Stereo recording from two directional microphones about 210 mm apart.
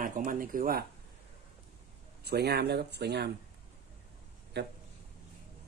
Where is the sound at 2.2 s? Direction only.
50° right (ahead or behind).